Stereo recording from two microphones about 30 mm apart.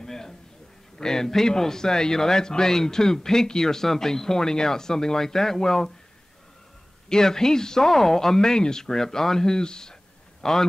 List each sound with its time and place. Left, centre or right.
0.0 s a sound: centre
0.9 s speech: centre
7.1 s speech: centre